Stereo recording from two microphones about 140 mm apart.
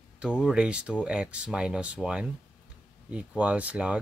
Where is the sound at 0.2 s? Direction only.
5° right (ahead or behind).